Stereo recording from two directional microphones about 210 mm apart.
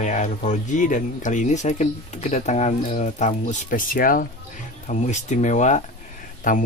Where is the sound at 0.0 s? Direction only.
35° left (ahead or behind).